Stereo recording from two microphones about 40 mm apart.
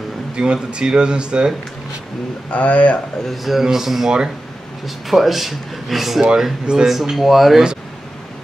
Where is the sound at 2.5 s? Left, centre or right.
Left.